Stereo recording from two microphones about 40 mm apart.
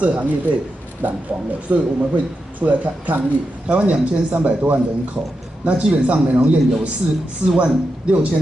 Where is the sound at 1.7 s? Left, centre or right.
Right.